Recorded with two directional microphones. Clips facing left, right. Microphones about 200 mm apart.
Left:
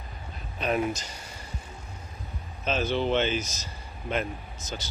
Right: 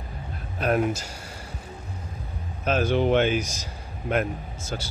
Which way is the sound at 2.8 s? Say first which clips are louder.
Right 5 dB; 15° right (ahead or behind).